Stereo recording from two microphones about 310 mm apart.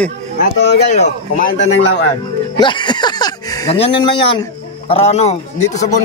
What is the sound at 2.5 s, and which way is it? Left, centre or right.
Speech, centre.